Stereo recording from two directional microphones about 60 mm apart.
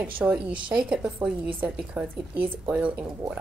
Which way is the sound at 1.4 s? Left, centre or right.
Right.